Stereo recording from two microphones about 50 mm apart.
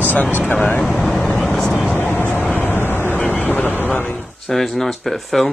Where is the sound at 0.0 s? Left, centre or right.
Left.